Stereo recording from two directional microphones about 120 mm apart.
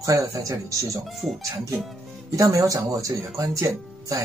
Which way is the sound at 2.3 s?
25° right (ahead or behind).